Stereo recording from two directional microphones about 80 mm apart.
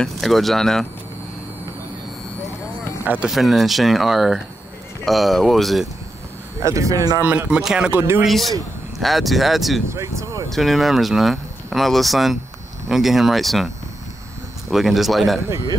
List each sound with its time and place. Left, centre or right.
0.0 s speech: centre
3.0 s speech: right
3.3 s speech: centre
6.6 s speech: right
7.2 s speech: centre
8.2 s speech: centre
9.8 s speech: right
10.5 s speech: centre
14.7 s speech: centre